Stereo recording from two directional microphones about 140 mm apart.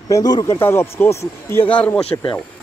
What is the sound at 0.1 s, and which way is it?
Speech, 30° left (ahead or behind).